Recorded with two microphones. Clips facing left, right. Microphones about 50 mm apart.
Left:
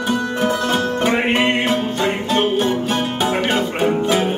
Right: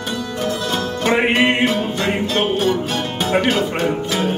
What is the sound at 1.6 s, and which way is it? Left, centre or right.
Music, centre.